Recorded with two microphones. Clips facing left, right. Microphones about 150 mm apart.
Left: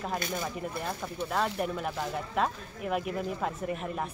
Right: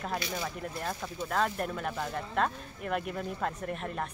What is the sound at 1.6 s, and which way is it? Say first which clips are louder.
Speech: left 2 dB; 5° left (ahead or behind).